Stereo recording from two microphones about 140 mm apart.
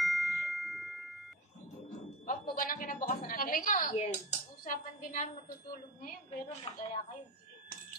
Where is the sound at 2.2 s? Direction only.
90° left.